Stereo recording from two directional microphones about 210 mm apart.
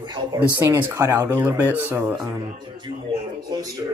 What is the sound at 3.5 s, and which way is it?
Speech, 20° right (ahead or behind).